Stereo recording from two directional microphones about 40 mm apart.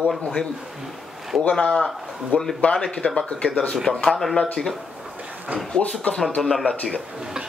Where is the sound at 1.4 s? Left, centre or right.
Left.